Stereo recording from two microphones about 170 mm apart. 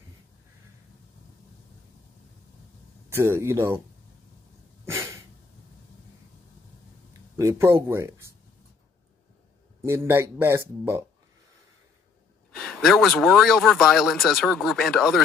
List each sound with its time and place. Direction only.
3.1 s speech: 15° right (ahead or behind)
4.8 s a sound: 15° right (ahead or behind)
7.3 s speech: 15° right (ahead or behind)
9.8 s speech: 15° right (ahead or behind)
12.5 s speech: centre (ahead or behind)